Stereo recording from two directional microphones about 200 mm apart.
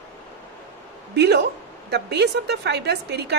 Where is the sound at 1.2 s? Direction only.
55° right (ahead or behind).